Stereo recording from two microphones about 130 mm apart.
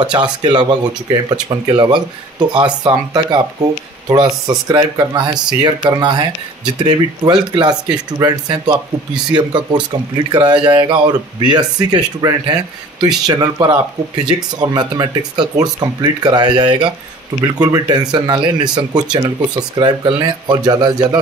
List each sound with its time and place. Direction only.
0.0 s speech: 35° right (ahead or behind)